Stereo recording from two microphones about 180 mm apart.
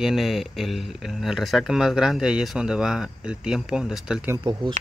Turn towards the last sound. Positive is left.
turn(degrees=-25)  # may be behind; listen again after turning